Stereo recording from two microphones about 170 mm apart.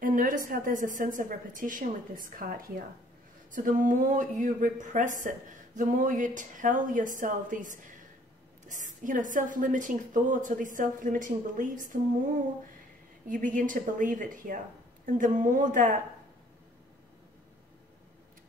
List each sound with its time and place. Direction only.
0.0 s a woman's voice: 50° right (ahead or behind)
13.3 s a woman's voice: 50° right (ahead or behind)